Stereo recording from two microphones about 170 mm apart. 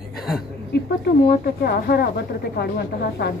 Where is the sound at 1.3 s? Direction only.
65° left (ahead or behind).